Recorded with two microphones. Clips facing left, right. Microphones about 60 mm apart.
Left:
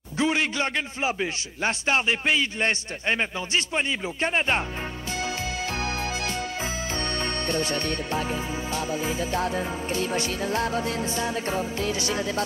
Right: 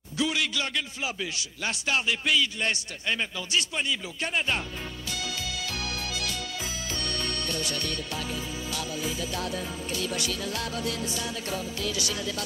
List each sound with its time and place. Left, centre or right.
0.2 s a man's voice: left
5.1 s music: left